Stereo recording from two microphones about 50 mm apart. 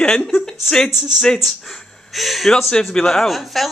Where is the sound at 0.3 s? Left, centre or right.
Centre.